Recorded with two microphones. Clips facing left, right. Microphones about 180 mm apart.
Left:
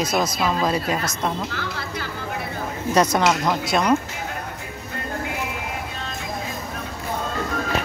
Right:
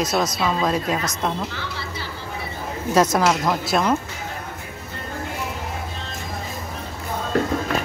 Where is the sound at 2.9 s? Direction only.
Centre (ahead or behind).